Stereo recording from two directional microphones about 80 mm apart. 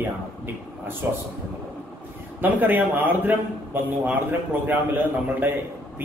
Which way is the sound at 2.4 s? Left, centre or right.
Right.